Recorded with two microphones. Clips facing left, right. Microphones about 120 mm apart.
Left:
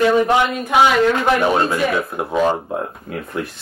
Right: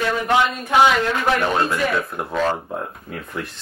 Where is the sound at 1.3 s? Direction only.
5° left (ahead or behind).